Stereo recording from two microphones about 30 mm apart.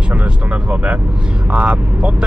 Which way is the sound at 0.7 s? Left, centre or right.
Right.